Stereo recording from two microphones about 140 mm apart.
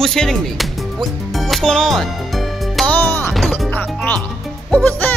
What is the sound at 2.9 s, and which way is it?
Music, 15° left (ahead or behind).